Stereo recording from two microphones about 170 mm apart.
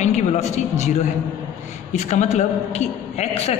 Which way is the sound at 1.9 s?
45° left (ahead or behind).